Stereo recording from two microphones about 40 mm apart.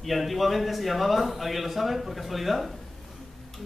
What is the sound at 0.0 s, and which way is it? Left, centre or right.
A man's voice, centre.